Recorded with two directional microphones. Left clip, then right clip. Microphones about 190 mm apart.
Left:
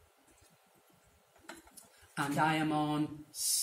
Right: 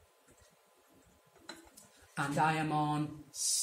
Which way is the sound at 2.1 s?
15° right (ahead or behind).